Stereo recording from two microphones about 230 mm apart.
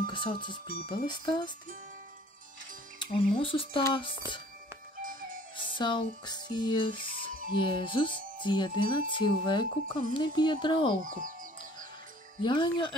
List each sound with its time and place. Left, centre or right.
0.0 s speech: left
3.0 s speech: left
5.6 s speech: left
11.1 s speech: right
12.4 s speech: centre